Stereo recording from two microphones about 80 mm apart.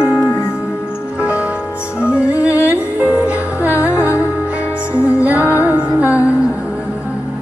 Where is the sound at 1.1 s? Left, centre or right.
Centre.